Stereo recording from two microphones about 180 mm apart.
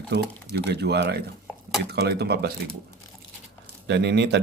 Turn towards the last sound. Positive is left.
turn(degrees=-70)  # may be behind; listen again after turning